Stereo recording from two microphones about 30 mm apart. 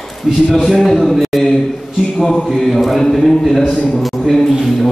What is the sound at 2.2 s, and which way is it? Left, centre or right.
A man's voice, centre.